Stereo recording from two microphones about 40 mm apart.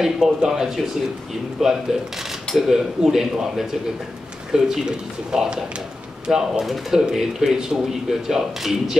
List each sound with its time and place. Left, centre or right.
0.0 s speech: centre
1.6 s speech: centre
6.6 s speech: centre